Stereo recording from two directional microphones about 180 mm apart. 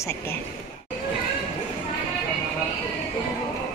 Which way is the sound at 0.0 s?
10° left (ahead or behind).